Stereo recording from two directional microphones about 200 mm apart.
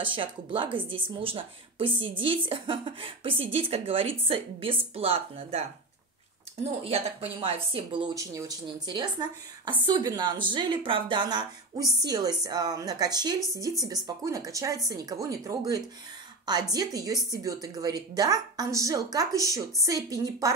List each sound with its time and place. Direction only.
0.0 s speech: 25° right (ahead or behind)
6.8 s speech: 30° right (ahead or behind)
8.2 s speech: 15° right (ahead or behind)